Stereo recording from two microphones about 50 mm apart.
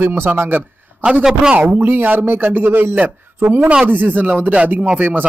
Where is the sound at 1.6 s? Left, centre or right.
Right.